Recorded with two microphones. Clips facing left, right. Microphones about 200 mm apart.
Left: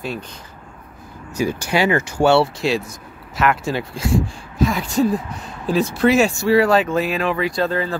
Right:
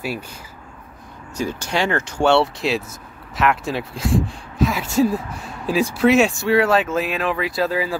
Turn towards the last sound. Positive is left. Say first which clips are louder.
# left 1 dB
turn(degrees=-5)  # may be behind; listen again after turning